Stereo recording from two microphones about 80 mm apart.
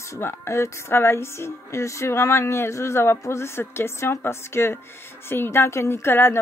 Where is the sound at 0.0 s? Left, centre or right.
Left.